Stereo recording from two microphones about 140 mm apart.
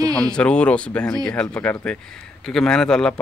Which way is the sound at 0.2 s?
5° left (ahead or behind).